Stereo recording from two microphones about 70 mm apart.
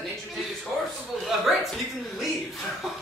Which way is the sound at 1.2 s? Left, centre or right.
Centre.